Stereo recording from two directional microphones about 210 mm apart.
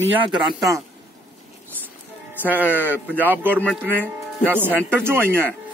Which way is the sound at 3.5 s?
5° left (ahead or behind).